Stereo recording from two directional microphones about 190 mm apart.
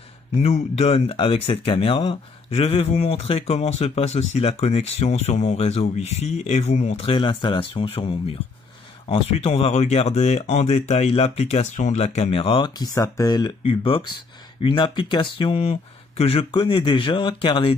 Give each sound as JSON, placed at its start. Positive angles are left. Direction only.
{"t": 0.4, "sound": "speech", "side_deg": 35}